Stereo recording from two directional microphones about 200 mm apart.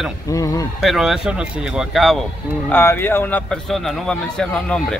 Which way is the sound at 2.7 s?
10° left (ahead or behind).